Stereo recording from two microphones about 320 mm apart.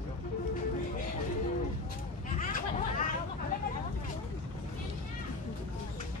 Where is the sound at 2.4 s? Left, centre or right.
Left.